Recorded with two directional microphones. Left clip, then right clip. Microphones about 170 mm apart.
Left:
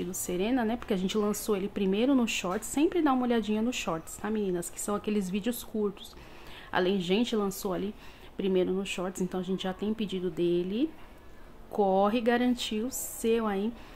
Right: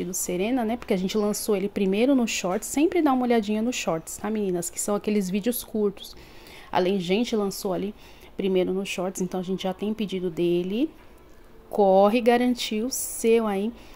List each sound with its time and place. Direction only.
0.0 s a woman's voice: 15° right (ahead or behind)